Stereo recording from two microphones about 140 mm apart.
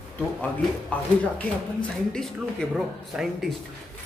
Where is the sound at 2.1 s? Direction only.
5° left (ahead or behind).